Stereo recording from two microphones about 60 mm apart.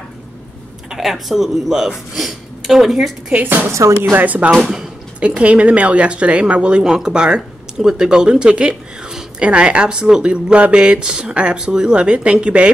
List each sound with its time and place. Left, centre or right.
0.8 s speech: centre
3.4 s a woman's voice: right; by 12.7 s centre